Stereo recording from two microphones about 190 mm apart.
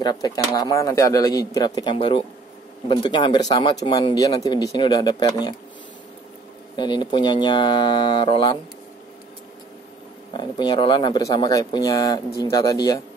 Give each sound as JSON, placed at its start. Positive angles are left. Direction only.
{"t": 0.0, "sound": "speech", "side_deg": 20}
{"t": 6.8, "sound": "speech", "side_deg": 25}
{"t": 10.3, "sound": "speech", "side_deg": 25}